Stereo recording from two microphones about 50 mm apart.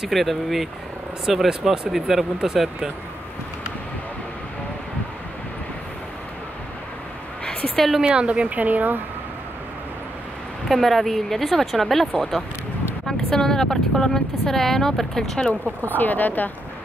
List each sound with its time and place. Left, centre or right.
0.1 s speech: centre
7.7 s speech: centre
8.0 s speech: right
10.7 s speech: centre
15.9 s speech: left